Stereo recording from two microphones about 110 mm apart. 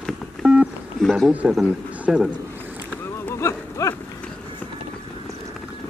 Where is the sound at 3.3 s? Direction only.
25° left (ahead or behind).